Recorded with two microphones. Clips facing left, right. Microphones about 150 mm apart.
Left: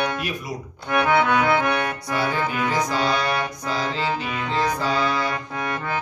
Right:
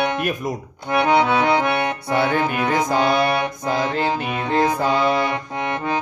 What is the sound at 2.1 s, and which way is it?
Music, 60° right (ahead or behind).